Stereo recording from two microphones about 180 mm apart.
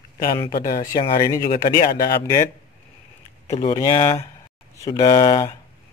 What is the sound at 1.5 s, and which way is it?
Speech, 50° left (ahead or behind).